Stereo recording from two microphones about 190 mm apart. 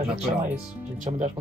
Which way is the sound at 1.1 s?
40° right (ahead or behind).